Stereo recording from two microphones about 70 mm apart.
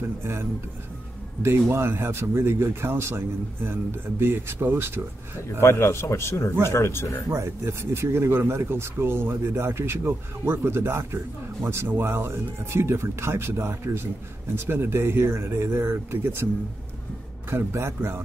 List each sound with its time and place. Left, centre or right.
0.2 s speech: right
1.7 s speech: right
5.6 s a man's voice: left
7.2 s speech: right
17.5 s speech: right